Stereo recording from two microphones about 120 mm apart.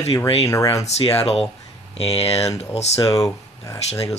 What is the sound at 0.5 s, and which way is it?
Speech, 25° left (ahead or behind).